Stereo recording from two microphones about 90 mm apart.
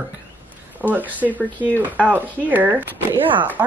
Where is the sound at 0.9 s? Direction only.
20° right (ahead or behind).